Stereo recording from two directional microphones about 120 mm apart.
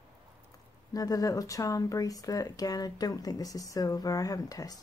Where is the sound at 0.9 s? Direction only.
30° left (ahead or behind).